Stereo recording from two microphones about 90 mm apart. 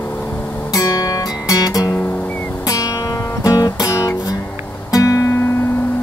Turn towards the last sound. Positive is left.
turn(degrees=35)  # may be behind; listen again after turning